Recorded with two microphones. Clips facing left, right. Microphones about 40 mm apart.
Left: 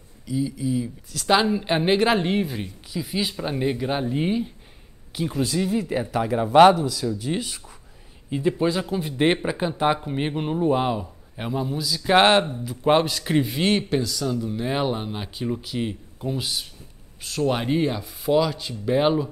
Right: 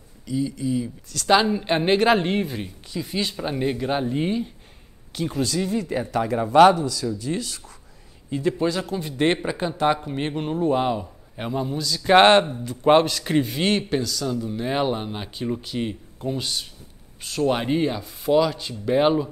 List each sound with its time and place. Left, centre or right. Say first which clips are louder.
0.3 s a man's voice: even; centre